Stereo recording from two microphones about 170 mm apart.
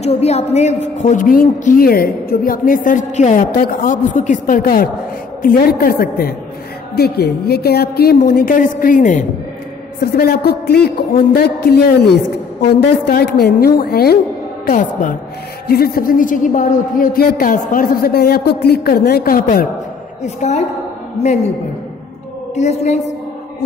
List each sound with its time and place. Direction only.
0.0 s a woman's voice: 40° left (ahead or behind)
10.1 s a man's voice: 70° left (ahead or behind)
14.7 s a woman's voice: 50° left (ahead or behind)
15.7 s a woman's voice: 60° left (ahead or behind)
20.2 s a woman's voice: 45° left (ahead or behind)
22.6 s a woman's voice: 40° left (ahead or behind)